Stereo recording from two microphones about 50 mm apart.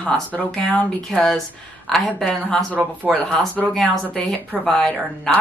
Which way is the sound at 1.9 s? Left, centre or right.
Centre.